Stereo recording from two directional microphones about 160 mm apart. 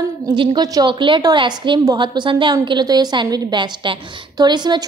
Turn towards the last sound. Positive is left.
turn(degrees=-25)  # may be behind; listen again after turning